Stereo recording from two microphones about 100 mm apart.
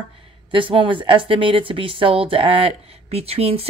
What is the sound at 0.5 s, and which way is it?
Speech, 55° right (ahead or behind).